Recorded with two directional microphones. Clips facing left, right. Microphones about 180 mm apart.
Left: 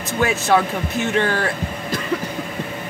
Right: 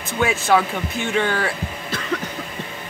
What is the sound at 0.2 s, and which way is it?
Speech, centre (ahead or behind).